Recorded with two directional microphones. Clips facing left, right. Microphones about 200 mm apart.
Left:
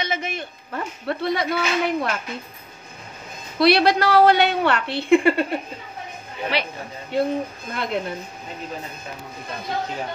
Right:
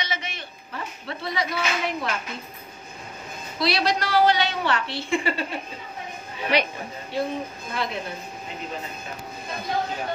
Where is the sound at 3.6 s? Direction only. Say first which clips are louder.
Left 7 dB; 60° left (ahead or behind).